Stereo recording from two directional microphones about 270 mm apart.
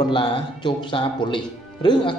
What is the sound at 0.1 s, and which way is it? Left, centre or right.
Speech, centre.